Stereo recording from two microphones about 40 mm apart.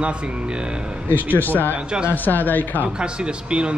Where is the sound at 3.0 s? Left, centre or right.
Right.